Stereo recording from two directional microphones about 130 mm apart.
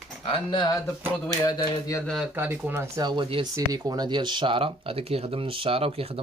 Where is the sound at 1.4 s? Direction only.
30° left (ahead or behind).